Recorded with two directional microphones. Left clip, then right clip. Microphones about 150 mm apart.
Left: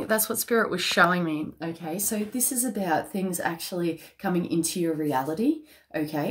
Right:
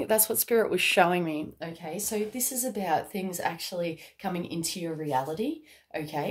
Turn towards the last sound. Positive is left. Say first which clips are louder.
# left 3 dB
turn(degrees=-15)  # may be behind; listen again after turning